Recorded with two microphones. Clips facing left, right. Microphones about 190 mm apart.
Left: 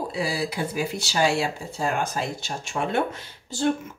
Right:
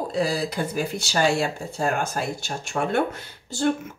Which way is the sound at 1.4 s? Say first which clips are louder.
Right 1 dB; 50° right (ahead or behind).